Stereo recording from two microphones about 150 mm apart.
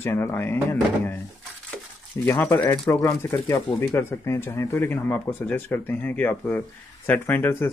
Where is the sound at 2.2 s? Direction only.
15° left (ahead or behind).